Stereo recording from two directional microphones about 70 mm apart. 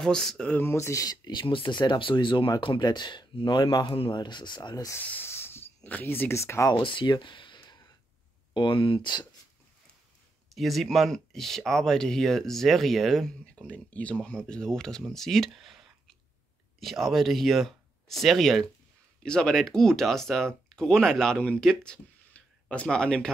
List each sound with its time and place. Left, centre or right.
0.0 s speech: centre
0.7 s speech: left
1.0 s speech: left
5.2 s hiss: left
5.9 s speech: left
6.3 s speech: left
7.1 s speech: left
7.5 s a sound: left
9.0 s speech: left
10.5 s speech: centre
13.6 s speech: centre